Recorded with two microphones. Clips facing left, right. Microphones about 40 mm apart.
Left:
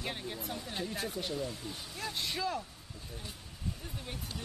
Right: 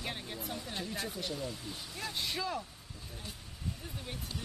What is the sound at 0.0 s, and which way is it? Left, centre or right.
Speech, centre.